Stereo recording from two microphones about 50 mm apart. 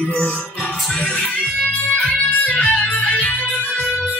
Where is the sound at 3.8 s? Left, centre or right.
Centre.